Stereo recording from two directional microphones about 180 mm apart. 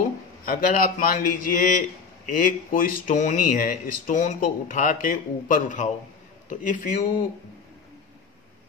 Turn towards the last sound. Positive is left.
turn(degrees=50)  # may be behind; listen again after turning